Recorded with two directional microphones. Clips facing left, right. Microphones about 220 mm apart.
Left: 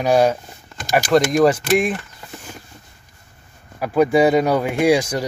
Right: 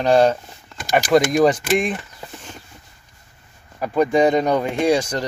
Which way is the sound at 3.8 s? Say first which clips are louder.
Left 2 dB; 5° left (ahead or behind).